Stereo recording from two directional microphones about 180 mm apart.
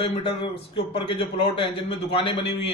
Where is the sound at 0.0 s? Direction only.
30° left (ahead or behind).